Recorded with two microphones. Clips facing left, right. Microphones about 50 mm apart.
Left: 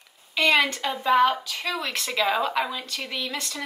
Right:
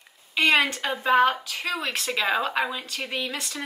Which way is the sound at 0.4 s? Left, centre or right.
Right.